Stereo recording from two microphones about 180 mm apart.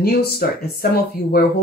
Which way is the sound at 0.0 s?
60° left (ahead or behind).